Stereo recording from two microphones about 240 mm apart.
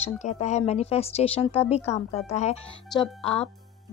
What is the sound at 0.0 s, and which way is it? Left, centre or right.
Speech, left.